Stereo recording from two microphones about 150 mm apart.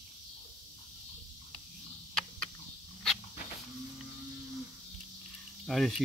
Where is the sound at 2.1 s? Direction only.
5° left (ahead or behind).